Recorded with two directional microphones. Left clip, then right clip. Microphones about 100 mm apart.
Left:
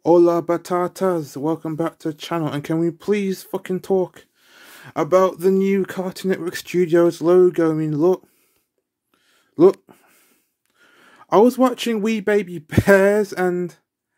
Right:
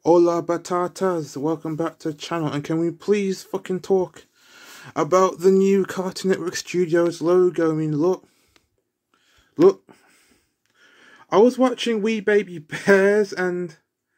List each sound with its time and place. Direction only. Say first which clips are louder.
0.0 s speech: left 2 dB; 30° left (ahead or behind)
6.5 s speech: left 3 dB; 30° left (ahead or behind)
9.6 s a sound: left 2 dB; 35° left (ahead or behind)
10.8 s speech: left 1 dB; 45° left (ahead or behind)